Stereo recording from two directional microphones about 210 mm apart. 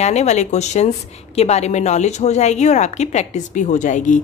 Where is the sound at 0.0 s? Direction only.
30° left (ahead or behind).